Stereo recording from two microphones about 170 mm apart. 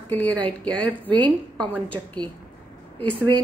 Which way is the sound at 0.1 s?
10° left (ahead or behind).